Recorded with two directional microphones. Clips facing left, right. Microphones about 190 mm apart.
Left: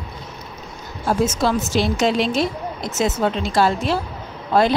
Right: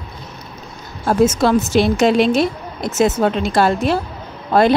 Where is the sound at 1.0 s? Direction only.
55° right (ahead or behind).